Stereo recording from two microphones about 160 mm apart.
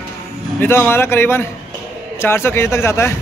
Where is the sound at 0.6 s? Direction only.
15° left (ahead or behind).